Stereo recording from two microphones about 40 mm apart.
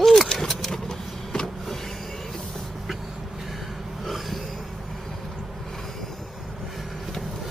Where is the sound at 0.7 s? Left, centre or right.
Centre.